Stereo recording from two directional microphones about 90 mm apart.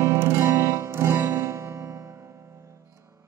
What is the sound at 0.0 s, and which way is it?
Music, 25° right (ahead or behind).